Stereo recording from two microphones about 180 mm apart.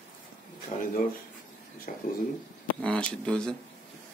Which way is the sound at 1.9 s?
45° left (ahead or behind).